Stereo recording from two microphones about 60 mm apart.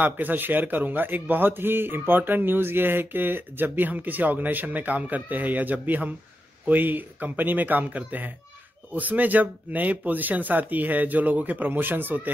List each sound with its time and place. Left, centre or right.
0.0 s a man's voice: right